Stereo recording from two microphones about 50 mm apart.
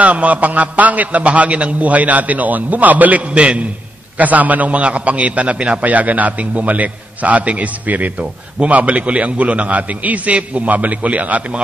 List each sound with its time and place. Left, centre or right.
0.0 s a man's voice: right
4.2 s a man's voice: right